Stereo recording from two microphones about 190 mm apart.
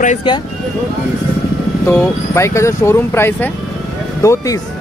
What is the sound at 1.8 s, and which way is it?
Speech, 10° left (ahead or behind).